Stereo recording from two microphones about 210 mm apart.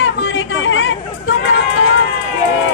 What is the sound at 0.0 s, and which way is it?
Chatter, 65° left (ahead or behind).